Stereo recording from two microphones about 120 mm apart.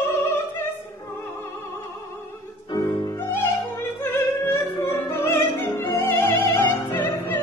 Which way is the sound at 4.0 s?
20° left (ahead or behind).